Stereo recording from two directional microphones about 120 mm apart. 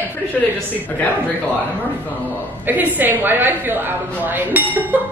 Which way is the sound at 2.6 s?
15° right (ahead or behind).